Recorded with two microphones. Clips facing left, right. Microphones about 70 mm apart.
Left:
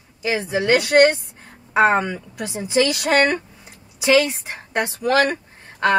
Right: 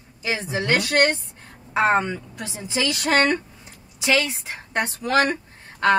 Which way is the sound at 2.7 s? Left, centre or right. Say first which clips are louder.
Left 6 dB; left.